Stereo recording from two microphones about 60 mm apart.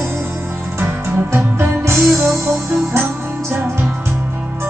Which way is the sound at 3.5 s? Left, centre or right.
Right.